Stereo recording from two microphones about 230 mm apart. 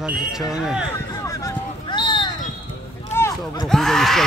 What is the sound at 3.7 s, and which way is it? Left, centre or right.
Speech, centre.